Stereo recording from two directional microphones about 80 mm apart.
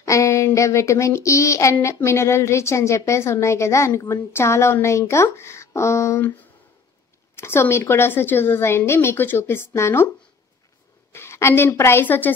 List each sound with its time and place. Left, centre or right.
0.0 s a woman's voice: left
7.3 s a woman's voice: left
11.1 s a woman's voice: left